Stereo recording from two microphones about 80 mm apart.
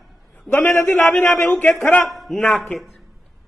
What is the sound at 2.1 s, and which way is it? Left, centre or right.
Speech, centre.